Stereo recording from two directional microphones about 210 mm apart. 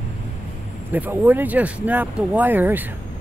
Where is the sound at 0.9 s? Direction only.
10° right (ahead or behind).